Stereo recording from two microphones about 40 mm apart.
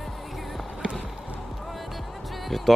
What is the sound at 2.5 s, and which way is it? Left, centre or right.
Music, centre.